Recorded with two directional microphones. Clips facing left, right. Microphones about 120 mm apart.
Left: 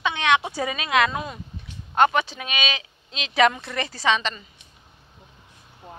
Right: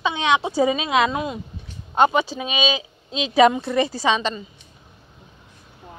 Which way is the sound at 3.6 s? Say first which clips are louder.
Right 6 dB; 10° right (ahead or behind).